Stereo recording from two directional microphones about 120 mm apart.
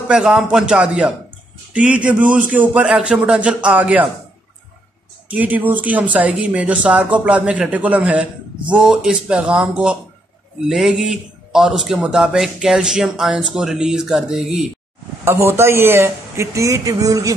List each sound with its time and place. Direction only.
0.1 s speech: 5° right (ahead or behind)
5.3 s a man's voice: 15° right (ahead or behind)
15.2 s speech: 20° right (ahead or behind)